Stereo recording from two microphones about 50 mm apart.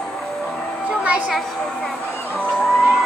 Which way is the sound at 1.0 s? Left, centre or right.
Right.